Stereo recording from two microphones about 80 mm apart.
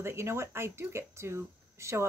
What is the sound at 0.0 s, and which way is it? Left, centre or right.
Speech, right.